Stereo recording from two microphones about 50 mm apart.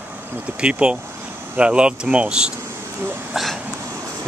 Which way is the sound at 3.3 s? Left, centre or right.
Centre.